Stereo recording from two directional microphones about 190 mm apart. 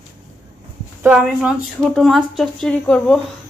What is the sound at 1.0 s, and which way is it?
Speech, 5° right (ahead or behind).